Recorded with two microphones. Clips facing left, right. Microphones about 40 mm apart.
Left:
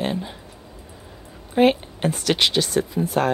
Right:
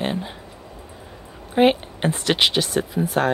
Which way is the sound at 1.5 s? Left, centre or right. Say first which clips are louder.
Even; centre.